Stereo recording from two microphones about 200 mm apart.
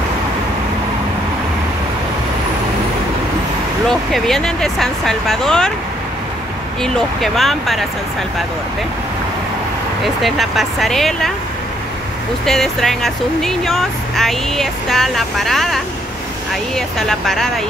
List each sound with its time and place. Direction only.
4.1 s speech: centre (ahead or behind)
6.8 s speech: centre (ahead or behind)
10.0 s speech: centre (ahead or behind)
12.4 s speech: centre (ahead or behind)